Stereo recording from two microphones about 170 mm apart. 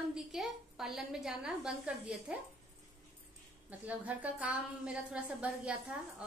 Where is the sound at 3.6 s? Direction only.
10° right (ahead or behind).